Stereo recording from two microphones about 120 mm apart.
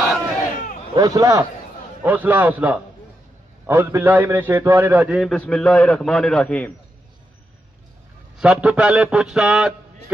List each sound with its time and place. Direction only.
0.9 s a man's voice: 30° right (ahead or behind)
2.0 s a man's voice: 15° right (ahead or behind)
5.1 s a man's voice: centre (ahead or behind)
8.4 s a man's voice: 5° right (ahead or behind)